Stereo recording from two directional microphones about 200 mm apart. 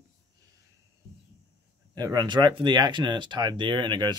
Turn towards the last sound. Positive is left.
turn(degrees=-20)  # may be behind; listen again after turning